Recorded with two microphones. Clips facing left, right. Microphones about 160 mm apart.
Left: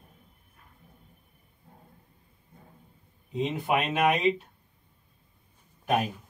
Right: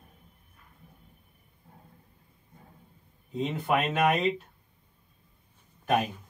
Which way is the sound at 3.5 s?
15° left (ahead or behind).